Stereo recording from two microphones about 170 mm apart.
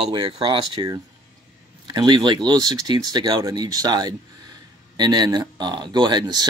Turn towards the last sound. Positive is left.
turn(degrees=-25)  # may be behind; listen again after turning